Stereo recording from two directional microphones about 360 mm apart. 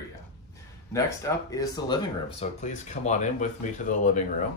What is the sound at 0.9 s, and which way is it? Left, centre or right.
Speech, centre.